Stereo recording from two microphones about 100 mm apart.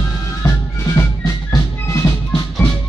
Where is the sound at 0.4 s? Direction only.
35° left (ahead or behind).